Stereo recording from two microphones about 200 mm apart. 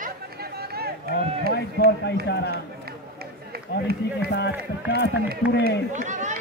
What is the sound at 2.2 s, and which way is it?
Speech, 55° left (ahead or behind).